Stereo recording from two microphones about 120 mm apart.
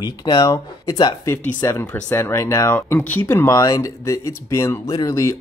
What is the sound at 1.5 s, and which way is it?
Speech, 20° left (ahead or behind).